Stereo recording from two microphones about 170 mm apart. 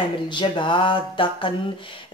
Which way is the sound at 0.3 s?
30° left (ahead or behind).